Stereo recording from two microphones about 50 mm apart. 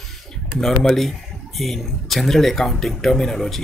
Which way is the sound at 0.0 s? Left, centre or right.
Centre.